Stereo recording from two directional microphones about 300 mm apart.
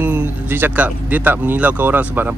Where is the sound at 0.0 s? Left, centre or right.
Centre.